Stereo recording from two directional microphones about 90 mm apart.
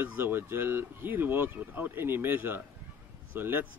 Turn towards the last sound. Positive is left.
turn(degrees=-20)  # may be behind; listen again after turning